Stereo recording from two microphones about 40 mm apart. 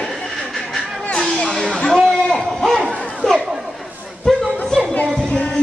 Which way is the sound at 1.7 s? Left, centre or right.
Centre.